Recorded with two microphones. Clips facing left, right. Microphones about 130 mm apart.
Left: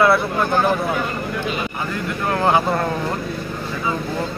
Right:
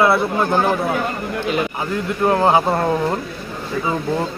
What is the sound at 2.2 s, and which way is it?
Speech, 25° right (ahead or behind).